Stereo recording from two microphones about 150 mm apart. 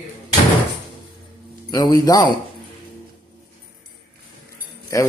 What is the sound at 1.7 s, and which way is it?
Speech, 25° left (ahead or behind).